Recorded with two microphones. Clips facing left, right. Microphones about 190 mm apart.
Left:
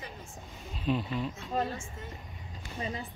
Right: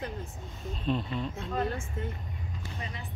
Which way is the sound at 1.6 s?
55° right (ahead or behind).